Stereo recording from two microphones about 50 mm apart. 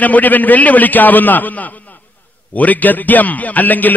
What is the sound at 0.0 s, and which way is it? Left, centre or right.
A man's voice, left.